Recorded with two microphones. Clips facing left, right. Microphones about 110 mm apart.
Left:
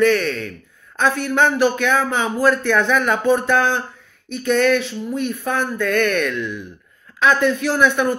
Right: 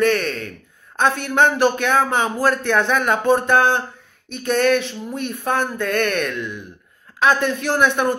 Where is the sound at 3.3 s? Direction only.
50° right (ahead or behind).